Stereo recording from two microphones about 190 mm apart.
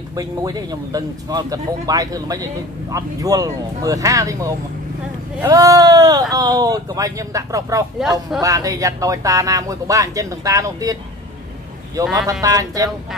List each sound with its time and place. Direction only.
0.1 s a man's voice: 20° right (ahead or behind)
8.0 s speech: 5° right (ahead or behind)
8.4 s a man's voice: 15° right (ahead or behind)